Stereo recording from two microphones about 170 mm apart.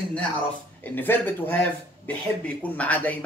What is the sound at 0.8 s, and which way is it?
Speech, 10° left (ahead or behind).